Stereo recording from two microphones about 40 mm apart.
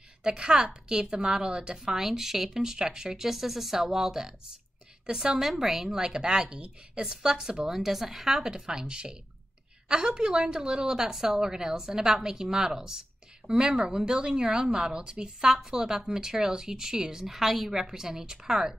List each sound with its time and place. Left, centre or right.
0.4 s a woman's voice: right
5.4 s a woman's voice: centre